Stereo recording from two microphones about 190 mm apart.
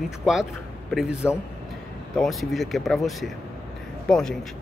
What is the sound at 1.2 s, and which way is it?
A man's voice, 10° left (ahead or behind).